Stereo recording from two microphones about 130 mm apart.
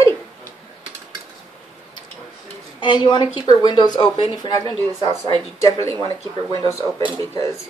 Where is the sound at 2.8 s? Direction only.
35° left (ahead or behind).